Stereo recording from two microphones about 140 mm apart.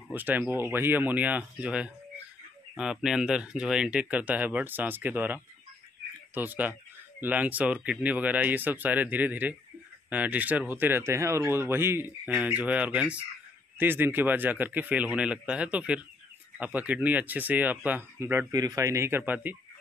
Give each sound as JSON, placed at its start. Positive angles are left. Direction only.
{"t": 0.1, "sound": "speech", "side_deg": -10}
{"t": 18.5, "sound": "speech", "side_deg": -25}